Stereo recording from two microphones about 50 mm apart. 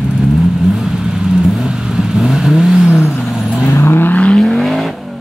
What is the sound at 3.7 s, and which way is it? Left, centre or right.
Vehicle, left.